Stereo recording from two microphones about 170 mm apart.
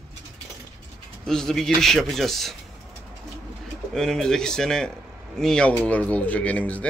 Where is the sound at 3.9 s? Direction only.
5° left (ahead or behind).